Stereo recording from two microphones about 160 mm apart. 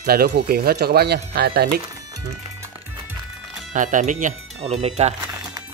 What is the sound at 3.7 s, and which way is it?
Speech, 50° right (ahead or behind).